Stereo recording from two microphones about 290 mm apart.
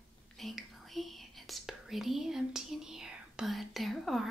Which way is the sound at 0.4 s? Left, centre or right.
Centre.